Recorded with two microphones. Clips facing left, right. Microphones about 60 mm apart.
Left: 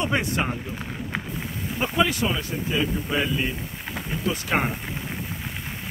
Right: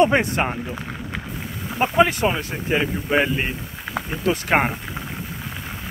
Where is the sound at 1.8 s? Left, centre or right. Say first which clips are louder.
Right 5 dB; right.